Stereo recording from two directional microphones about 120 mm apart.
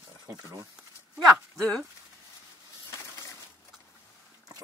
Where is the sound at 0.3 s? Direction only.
30° right (ahead or behind).